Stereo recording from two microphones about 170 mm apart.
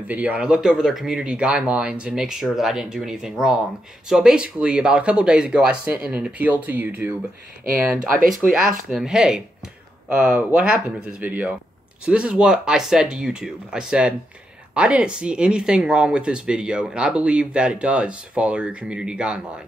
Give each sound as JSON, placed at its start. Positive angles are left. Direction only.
{"t": 0.1, "sound": "speech", "side_deg": -10}
{"t": 8.1, "sound": "speech", "side_deg": -55}
{"t": 8.9, "sound": "speech", "side_deg": -5}